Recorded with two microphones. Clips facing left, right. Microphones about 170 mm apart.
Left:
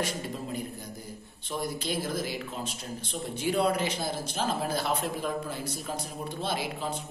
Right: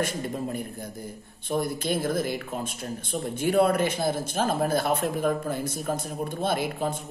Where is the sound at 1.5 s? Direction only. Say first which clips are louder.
Right 6 dB; 55° right (ahead or behind).